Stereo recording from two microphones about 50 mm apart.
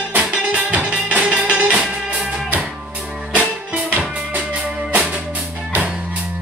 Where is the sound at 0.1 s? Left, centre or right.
Right.